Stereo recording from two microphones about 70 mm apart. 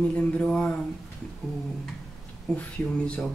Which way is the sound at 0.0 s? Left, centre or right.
Centre.